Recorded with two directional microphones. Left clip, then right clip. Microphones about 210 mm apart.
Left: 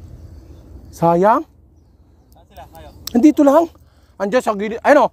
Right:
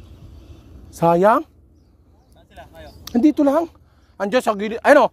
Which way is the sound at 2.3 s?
45° right (ahead or behind).